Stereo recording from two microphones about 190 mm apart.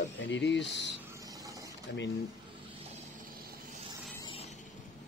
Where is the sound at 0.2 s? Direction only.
70° left (ahead or behind).